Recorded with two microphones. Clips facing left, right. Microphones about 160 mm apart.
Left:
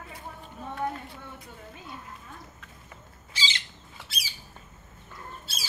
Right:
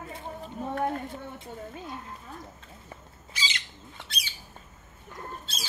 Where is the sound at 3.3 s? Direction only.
30° left (ahead or behind).